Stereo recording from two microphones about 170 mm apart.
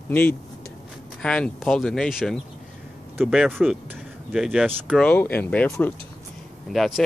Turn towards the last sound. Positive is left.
turn(degrees=0)  # may be behind; listen again after turning